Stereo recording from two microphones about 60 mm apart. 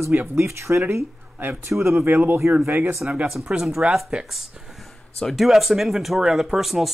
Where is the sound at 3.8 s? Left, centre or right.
Centre.